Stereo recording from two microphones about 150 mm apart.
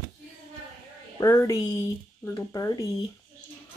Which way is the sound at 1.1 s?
20° left (ahead or behind).